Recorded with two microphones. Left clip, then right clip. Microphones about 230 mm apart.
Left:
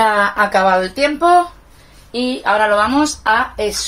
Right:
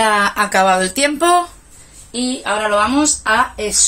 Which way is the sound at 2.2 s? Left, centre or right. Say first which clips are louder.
Left 4 dB; centre.